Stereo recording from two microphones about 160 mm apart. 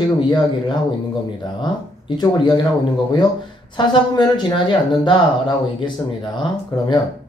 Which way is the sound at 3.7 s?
30° left (ahead or behind).